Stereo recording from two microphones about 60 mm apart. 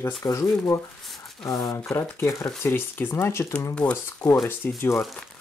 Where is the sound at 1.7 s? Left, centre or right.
Left.